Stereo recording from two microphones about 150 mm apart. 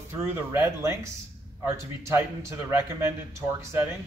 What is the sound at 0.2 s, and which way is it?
Speech, 15° right (ahead or behind).